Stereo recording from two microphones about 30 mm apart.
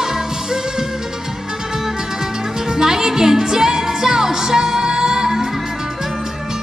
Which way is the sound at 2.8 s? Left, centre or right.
Centre.